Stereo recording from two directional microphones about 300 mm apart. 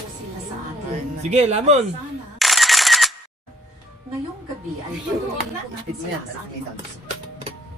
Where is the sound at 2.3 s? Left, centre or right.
Centre.